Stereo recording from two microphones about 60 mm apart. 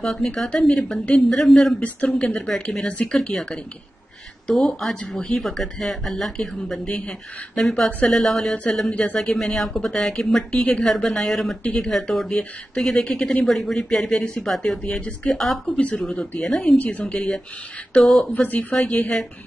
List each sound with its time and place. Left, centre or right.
0.0 s a woman's voice: centre
1.0 s speech: left
1.4 s speech: centre
1.8 s a woman's voice: centre
5.0 s speech: left
5.4 s a woman's voice: centre
8.9 s speech: left
9.2 s a woman's voice: centre
12.3 s a woman's voice: centre
15.3 s a woman's voice: centre
16.7 s speech: left
17.0 s a woman's voice: centre
18.3 s speech: left